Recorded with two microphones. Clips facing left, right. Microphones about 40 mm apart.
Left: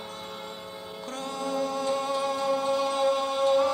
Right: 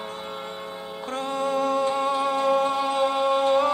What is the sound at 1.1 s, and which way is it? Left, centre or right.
Music, right.